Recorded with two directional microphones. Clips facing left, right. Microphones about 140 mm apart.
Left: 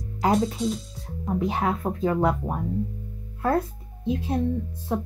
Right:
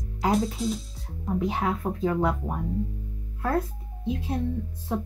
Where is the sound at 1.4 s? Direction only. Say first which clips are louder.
Left 2 dB; 45° left (ahead or behind).